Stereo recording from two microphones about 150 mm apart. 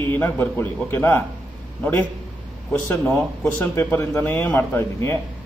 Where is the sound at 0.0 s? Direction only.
15° left (ahead or behind).